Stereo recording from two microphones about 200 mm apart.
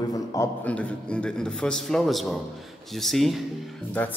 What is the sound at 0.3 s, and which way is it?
Speech, 10° left (ahead or behind).